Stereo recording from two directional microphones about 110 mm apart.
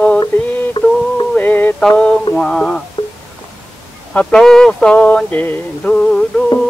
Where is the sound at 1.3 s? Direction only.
15° left (ahead or behind).